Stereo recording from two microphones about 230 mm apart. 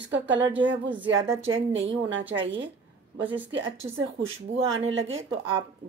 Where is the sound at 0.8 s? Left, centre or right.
Centre.